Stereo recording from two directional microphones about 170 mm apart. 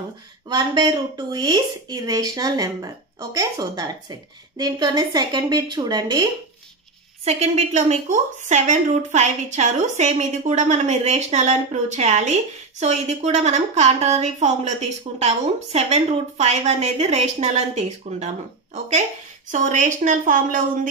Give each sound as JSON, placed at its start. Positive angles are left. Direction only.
{"t": 0.5, "sound": "speech", "side_deg": -25}
{"t": 7.2, "sound": "a woman's voice", "side_deg": -40}